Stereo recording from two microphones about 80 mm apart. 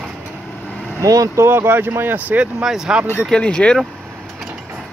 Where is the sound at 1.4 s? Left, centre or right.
Right.